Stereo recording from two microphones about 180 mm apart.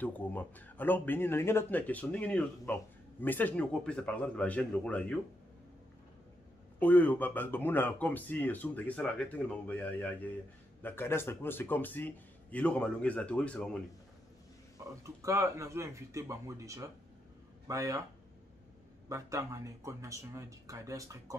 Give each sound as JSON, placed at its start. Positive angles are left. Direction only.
{"t": 0.0, "sound": "speech", "side_deg": 10}
{"t": 6.8, "sound": "speech", "side_deg": 10}
{"t": 15.0, "sound": "speech", "side_deg": -15}
{"t": 19.0, "sound": "speech", "side_deg": -15}